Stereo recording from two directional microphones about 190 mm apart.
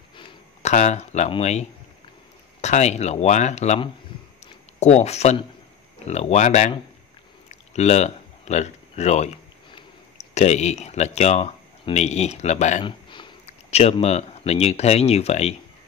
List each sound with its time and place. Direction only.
0.2 s speech: 35° left (ahead or behind)
7.4 s a sound: 35° left (ahead or behind)
9.8 s speech: 35° left (ahead or behind)
12.8 s speech: 25° left (ahead or behind)